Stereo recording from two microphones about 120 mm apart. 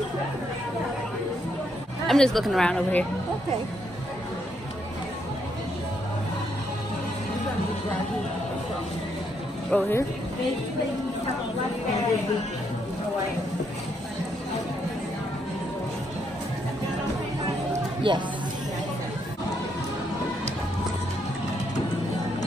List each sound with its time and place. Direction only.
2.0 s speech: 5° left (ahead or behind)
9.7 s speech: 15° left (ahead or behind)
18.1 s speech: 40° right (ahead or behind)